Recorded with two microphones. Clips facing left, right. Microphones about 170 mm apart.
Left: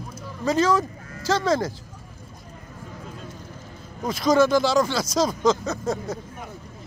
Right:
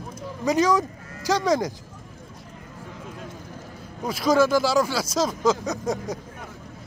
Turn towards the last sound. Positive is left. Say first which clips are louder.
# even
turn(degrees=-15)  # may be behind; listen again after turning